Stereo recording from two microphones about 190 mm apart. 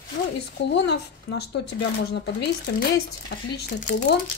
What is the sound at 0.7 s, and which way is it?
Speech, 60° left (ahead or behind).